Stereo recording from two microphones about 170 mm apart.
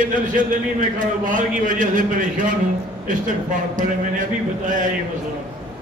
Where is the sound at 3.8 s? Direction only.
50° right (ahead or behind).